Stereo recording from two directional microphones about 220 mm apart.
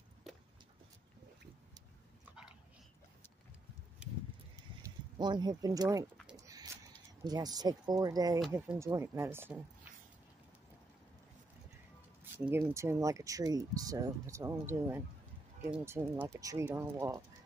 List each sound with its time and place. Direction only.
5.2 s speech: 20° right (ahead or behind)
6.3 s a sound: 15° right (ahead or behind)
7.2 s speech: 15° right (ahead or behind)
12.4 s speech: 5° right (ahead or behind)